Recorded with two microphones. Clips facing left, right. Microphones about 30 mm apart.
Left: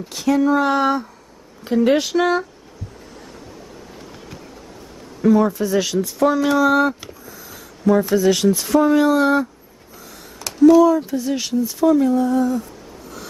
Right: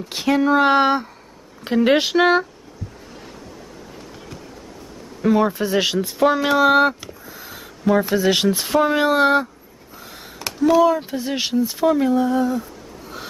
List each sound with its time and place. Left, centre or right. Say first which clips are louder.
0.1 s speech: even; right
5.3 s speech: left 1 dB; right
9.9 s a sound: right 2 dB; right
10.8 s speech: left 2 dB; right